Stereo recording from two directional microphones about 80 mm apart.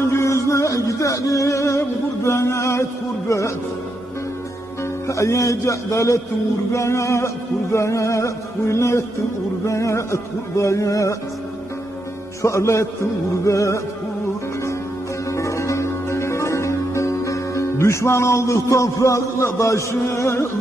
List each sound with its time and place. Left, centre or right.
0.1 s music: left
5.0 s music: left
12.4 s music: left
15.3 s music: left